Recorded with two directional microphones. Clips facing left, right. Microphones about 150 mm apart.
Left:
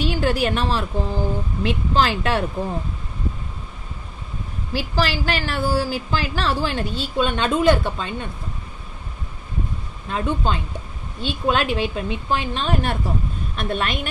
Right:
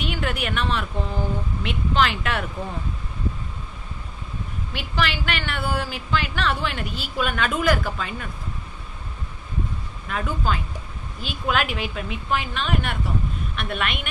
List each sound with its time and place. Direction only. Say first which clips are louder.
0.0 s a woman's voice: left 6 dB; 30° left (ahead or behind)
4.7 s a woman's voice: left 4 dB; 35° left (ahead or behind)
10.0 s a woman's voice: left 3 dB; 30° left (ahead or behind)